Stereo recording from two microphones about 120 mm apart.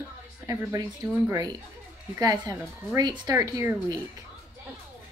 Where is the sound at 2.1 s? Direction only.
35° right (ahead or behind).